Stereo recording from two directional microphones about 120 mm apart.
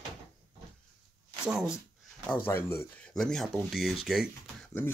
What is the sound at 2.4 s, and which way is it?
Speech, 20° left (ahead or behind).